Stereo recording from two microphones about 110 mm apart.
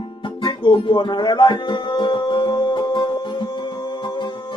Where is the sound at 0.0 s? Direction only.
45° left (ahead or behind).